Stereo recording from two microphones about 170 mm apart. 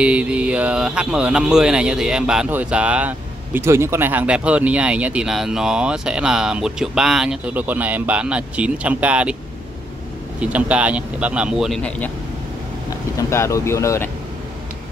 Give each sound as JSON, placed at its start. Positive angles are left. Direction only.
{"t": 0.0, "sound": "speech", "side_deg": -5}
{"t": 10.4, "sound": "speech", "side_deg": -5}
{"t": 13.3, "sound": "speech", "side_deg": 15}